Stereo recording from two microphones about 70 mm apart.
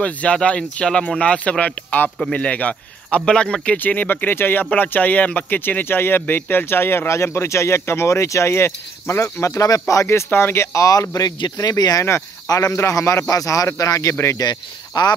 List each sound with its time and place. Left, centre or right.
0.0 s speech: centre; by 12.0 s left
12.4 s speech: left
12.7 s speech: left
14.4 s speech: left